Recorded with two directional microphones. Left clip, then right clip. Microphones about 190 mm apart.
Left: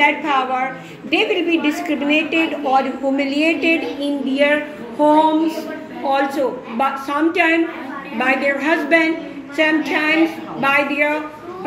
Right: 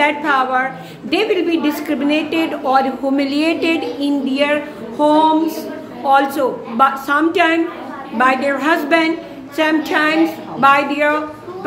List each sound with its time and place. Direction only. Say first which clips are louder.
0.0 s a woman's voice: right 1 dB; 20° right (ahead or behind)
5.0 s a sound: even; 5° right (ahead or behind)
6.0 s a woman's voice: right 4 dB; 15° right (ahead or behind)